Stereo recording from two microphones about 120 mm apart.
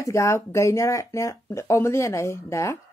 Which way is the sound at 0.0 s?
25° left (ahead or behind).